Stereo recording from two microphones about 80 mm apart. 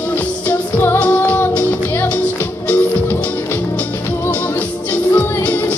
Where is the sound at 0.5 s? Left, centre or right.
Left.